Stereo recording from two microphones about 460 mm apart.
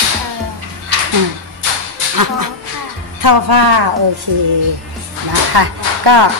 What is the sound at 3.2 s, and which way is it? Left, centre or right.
Speech, right.